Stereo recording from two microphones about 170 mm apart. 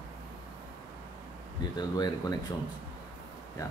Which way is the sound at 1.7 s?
25° left (ahead or behind).